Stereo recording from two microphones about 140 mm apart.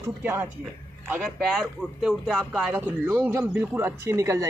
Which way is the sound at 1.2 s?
5° right (ahead or behind).